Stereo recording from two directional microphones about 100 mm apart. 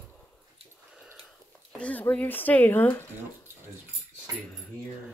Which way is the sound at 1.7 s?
15° left (ahead or behind).